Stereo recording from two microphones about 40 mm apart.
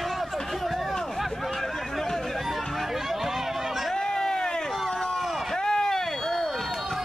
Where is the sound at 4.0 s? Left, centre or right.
Centre.